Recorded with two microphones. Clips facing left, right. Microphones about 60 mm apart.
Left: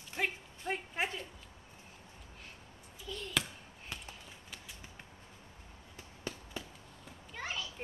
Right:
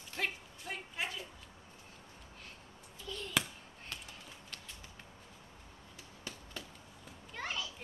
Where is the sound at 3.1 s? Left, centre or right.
Centre.